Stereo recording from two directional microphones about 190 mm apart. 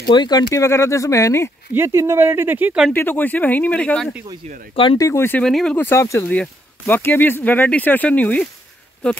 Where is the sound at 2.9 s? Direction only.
10° left (ahead or behind).